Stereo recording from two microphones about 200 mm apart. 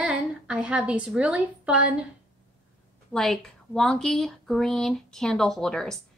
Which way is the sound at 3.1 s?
Centre (ahead or behind).